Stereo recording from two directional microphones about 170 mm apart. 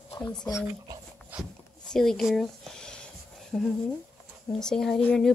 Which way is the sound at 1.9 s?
Centre (ahead or behind).